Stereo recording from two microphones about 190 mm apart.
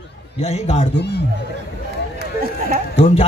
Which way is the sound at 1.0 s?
60° left (ahead or behind).